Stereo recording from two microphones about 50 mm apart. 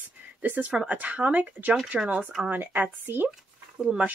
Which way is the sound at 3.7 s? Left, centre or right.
Centre.